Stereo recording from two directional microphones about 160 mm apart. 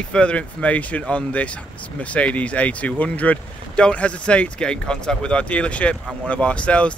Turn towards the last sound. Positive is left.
turn(degrees=5)  # may be behind; listen again after turning